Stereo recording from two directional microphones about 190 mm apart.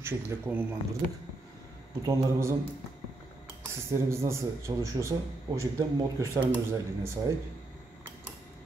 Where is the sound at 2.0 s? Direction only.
15° right (ahead or behind).